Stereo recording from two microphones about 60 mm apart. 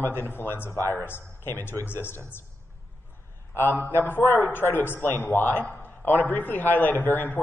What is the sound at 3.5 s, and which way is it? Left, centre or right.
A man's voice, left.